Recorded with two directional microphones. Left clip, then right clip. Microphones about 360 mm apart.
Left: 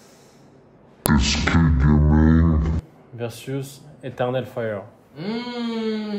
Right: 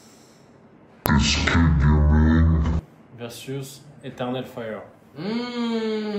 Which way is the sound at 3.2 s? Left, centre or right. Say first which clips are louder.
Left 4 dB; left.